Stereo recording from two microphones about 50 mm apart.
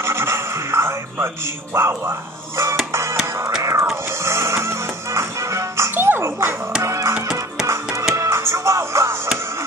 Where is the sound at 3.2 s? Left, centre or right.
Right.